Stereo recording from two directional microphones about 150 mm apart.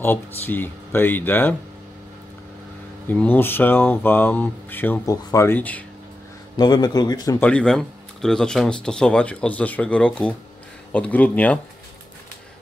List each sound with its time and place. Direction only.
0.0 s speech: 15° left (ahead or behind)
3.1 s speech: 10° left (ahead or behind)
6.5 s speech: 25° left (ahead or behind)
7.3 s speech: 10° left (ahead or behind)